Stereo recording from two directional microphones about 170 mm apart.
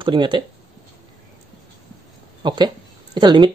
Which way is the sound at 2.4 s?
25° right (ahead or behind).